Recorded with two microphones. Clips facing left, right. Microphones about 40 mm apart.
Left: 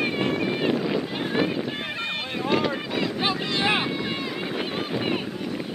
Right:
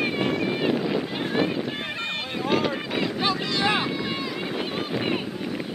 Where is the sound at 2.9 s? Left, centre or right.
Centre.